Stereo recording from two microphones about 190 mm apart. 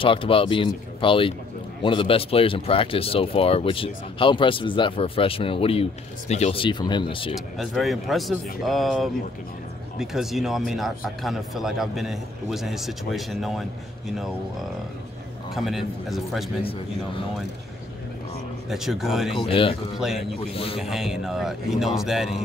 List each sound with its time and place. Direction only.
0.0 s speech: 30° left (ahead or behind)
7.3 s a man's voice: centre (ahead or behind)
15.5 s a man's voice: centre (ahead or behind)
18.7 s a man's voice: centre (ahead or behind)
19.3 s speech: 30° left (ahead or behind)
20.0 s a man's voice: centre (ahead or behind)
20.3 s a man's voice: 30° left (ahead or behind)
20.8 s a man's voice: centre (ahead or behind)